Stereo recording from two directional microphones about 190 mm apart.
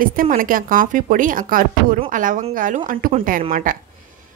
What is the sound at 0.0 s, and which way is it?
A woman's voice, 50° right (ahead or behind).